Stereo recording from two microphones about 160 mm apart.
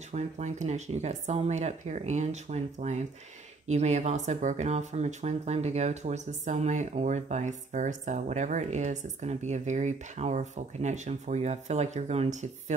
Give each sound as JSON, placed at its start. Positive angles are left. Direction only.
{"t": 0.1, "sound": "speech", "side_deg": -45}